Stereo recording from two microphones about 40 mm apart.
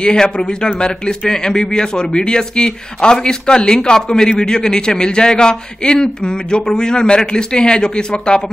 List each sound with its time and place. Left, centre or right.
0.0 s speech: centre